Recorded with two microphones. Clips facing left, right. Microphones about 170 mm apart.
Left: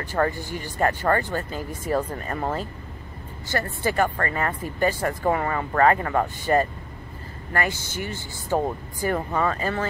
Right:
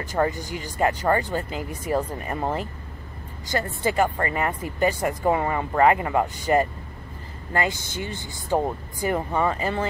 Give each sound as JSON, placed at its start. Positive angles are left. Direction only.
{"t": 0.1, "sound": "speech", "side_deg": -15}